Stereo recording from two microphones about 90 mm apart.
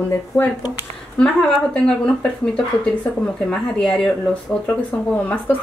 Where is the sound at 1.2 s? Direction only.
10° left (ahead or behind).